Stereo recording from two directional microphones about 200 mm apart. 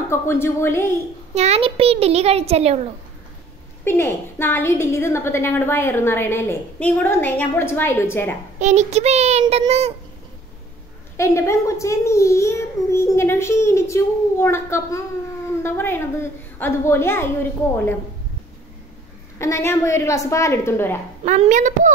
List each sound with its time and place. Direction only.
0.1 s a woman's voice: 15° left (ahead or behind)
1.3 s a child's voice: 30° right (ahead or behind)
3.8 s a woman's voice: 10° left (ahead or behind)
8.5 s a child's voice: 35° right (ahead or behind)
11.1 s a woman's voice: 15° left (ahead or behind)
19.3 s a woman's voice: 15° left (ahead or behind)
21.2 s a child's voice: 35° right (ahead or behind)